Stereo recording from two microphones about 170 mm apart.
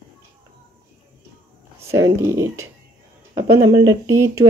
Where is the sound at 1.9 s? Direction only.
20° right (ahead or behind).